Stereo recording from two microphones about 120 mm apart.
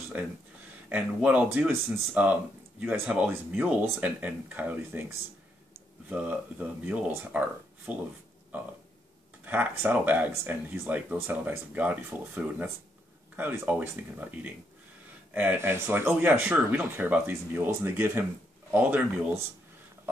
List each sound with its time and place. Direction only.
0.8 s speech: 15° right (ahead or behind)
6.0 s speech: 15° right (ahead or behind)
9.4 s speech: 15° right (ahead or behind)